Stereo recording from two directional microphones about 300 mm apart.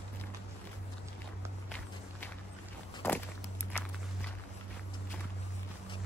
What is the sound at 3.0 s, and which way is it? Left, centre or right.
Walk, centre.